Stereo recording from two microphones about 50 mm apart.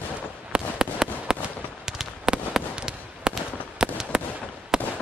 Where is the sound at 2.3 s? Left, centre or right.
Right.